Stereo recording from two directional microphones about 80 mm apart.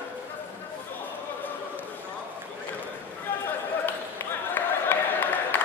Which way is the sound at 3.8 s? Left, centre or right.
Left.